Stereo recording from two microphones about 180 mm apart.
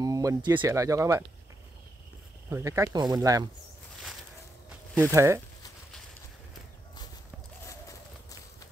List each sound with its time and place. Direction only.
0.0 s speech: 20° right (ahead or behind)
2.5 s speech: 15° right (ahead or behind)
5.1 s speech: 15° right (ahead or behind)